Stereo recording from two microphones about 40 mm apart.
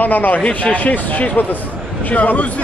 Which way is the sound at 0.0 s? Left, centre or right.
Left.